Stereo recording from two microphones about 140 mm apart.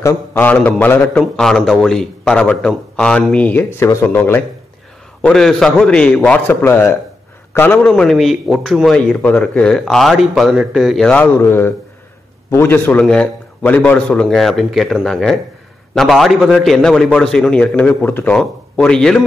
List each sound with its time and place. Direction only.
0.0 s a man's voice: 15° left (ahead or behind)
5.2 s a man's voice: 5° left (ahead or behind)
7.9 s a man's voice: centre (ahead or behind)